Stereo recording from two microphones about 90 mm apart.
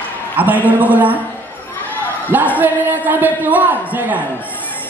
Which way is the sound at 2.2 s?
20° right (ahead or behind).